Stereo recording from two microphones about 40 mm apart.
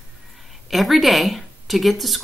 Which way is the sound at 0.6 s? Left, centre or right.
Centre.